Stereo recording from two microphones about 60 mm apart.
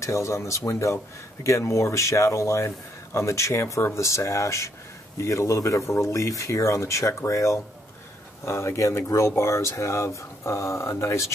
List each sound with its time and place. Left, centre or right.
0.0 s speech: left